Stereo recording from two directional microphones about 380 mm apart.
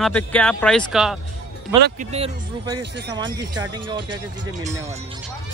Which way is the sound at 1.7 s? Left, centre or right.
Centre.